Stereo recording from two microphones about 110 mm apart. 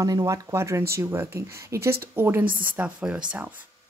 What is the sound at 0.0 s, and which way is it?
Speech, 30° right (ahead or behind).